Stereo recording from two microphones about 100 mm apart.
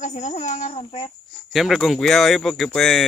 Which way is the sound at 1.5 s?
Centre (ahead or behind).